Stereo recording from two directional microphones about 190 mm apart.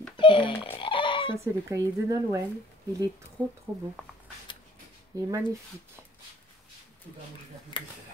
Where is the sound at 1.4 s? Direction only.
15° right (ahead or behind).